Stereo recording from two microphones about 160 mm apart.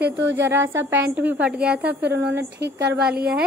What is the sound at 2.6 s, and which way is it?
Speech, 90° right.